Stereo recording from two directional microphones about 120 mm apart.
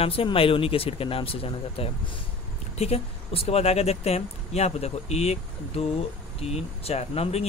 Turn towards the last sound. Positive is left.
turn(degrees=60)  # may be behind; listen again after turning